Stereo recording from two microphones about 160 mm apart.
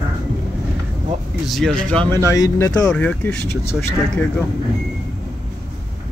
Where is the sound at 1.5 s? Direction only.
5° left (ahead or behind).